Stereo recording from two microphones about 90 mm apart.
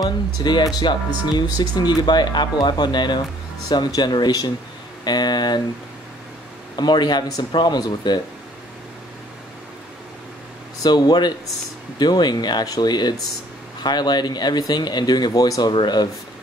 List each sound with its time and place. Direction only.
0.0 s speech: 55° left (ahead or behind)
6.8 s speech: 55° left (ahead or behind)
10.8 s speech: 50° left (ahead or behind)
15.7 s speech: 55° left (ahead or behind)